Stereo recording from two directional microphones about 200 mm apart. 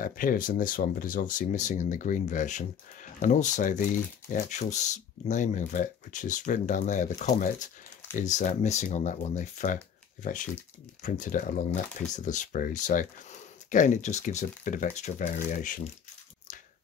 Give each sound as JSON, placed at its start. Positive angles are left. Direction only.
{"t": 0.0, "sound": "speech", "side_deg": 45}
{"t": 11.0, "sound": "speech", "side_deg": 40}